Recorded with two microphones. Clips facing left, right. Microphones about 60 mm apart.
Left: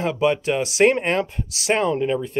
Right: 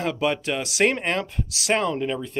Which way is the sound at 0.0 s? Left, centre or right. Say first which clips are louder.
Left 4 dB; centre.